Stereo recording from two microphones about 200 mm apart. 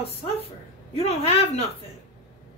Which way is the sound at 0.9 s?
30° left (ahead or behind).